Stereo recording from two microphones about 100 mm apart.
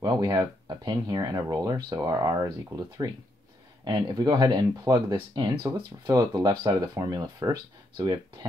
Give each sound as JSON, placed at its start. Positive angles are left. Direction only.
{"t": 0.0, "sound": "speech", "side_deg": -40}